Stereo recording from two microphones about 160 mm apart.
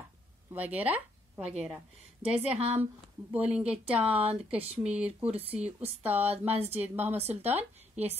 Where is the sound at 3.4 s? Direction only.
5° right (ahead or behind).